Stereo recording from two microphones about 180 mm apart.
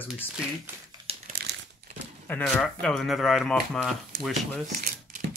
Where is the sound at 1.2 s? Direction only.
60° right (ahead or behind).